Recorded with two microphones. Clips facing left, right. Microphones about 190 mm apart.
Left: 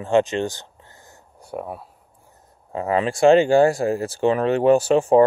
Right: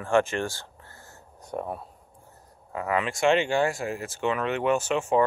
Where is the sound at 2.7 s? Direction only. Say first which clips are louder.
Left 6 dB; 30° left (ahead or behind).